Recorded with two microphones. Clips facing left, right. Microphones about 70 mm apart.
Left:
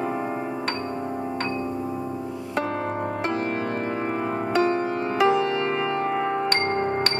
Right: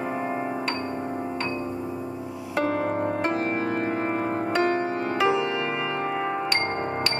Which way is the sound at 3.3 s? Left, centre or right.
Centre.